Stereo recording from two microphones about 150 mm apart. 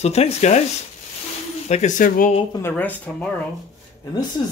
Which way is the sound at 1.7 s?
55° left (ahead or behind).